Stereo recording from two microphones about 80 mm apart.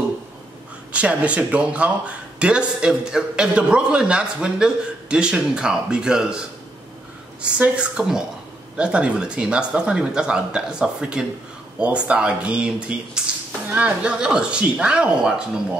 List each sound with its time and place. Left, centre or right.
0.9 s speech: centre
7.5 s speech: centre